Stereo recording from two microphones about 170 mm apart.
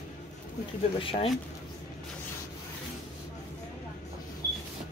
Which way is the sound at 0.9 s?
30° left (ahead or behind).